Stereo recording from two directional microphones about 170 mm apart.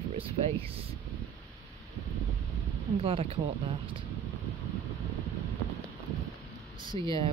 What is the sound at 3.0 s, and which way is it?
Speech, 35° right (ahead or behind).